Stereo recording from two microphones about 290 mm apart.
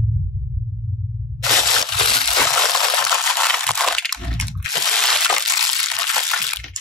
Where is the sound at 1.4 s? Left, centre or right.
Centre.